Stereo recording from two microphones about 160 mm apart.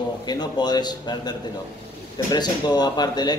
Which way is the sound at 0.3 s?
25° left (ahead or behind).